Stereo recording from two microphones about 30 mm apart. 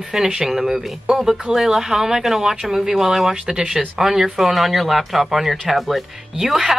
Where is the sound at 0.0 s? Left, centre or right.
Centre.